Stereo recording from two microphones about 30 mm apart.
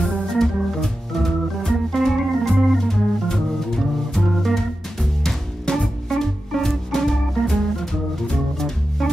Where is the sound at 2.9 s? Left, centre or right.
Centre.